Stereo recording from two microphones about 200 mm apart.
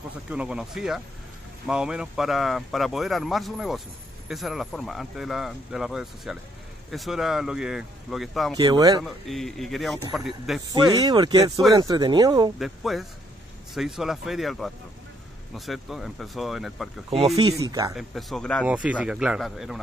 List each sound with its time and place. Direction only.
0.3 s speech: 5° right (ahead or behind)
8.5 s speech: 20° right (ahead or behind)
9.0 s speech: centre (ahead or behind)
10.9 s speech: 20° right (ahead or behind)
12.5 s speech: centre (ahead or behind)
17.3 s speech: 15° right (ahead or behind)
17.9 s speech: centre (ahead or behind)
18.7 s speech: 5° right (ahead or behind)